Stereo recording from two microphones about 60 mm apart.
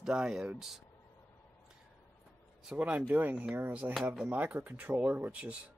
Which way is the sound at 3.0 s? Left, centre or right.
Right.